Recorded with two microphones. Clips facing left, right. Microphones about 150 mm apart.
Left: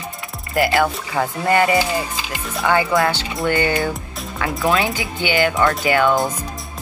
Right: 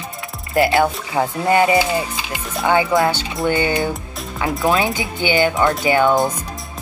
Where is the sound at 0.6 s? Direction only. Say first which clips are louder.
Right 2 dB; 20° right (ahead or behind).